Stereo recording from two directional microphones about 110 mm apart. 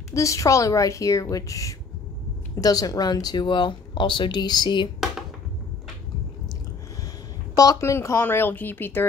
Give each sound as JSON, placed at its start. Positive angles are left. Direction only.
{"t": 0.1, "sound": "speech", "side_deg": 30}
{"t": 7.5, "sound": "speech", "side_deg": 35}